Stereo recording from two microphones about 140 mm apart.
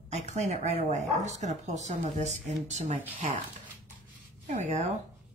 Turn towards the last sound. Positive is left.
turn(degrees=-55)  # may be behind; listen again after turning